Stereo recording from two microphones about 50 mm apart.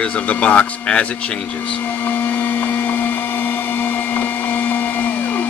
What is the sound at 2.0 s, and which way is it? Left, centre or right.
Blender, left.